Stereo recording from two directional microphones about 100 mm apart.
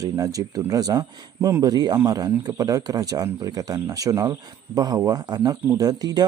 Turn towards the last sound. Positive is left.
turn(degrees=-40)  # may be behind; listen again after turning